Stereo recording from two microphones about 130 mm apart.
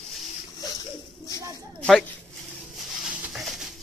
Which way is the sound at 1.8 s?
5° left (ahead or behind).